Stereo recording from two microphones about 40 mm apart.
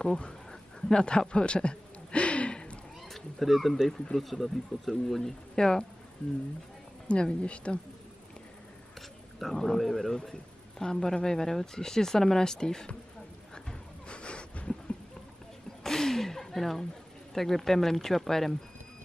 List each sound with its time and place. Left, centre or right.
0.0 s speech: centre
0.5 s a sound: centre
3.1 s speech: centre
7.1 s speech: left
9.4 s speech: centre
10.8 s speech: centre
13.7 s a sound: left
15.8 s a sound: centre
17.3 s speech: centre